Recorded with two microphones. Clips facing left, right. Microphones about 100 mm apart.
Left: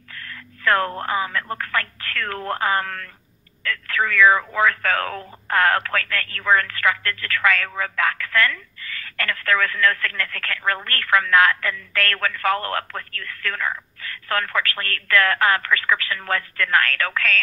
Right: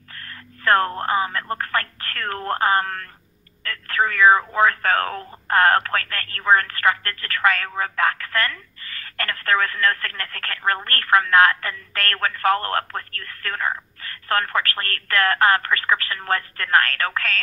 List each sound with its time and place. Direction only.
0.1 s speech: 40° right (ahead or behind)